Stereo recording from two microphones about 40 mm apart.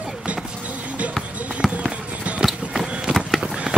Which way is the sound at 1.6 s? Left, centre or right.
Centre.